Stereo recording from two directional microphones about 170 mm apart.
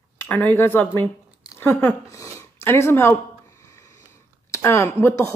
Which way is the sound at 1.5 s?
15° left (ahead or behind).